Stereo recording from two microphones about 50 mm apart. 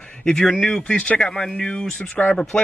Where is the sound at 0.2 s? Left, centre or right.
Centre.